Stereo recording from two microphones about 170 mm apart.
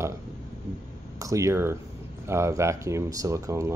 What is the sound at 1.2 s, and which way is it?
Speech, 20° right (ahead or behind).